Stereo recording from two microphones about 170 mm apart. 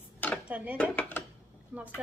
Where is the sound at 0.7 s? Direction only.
10° left (ahead or behind).